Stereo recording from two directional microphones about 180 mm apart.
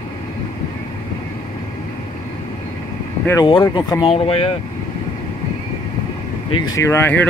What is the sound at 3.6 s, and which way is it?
Speech, 20° left (ahead or behind).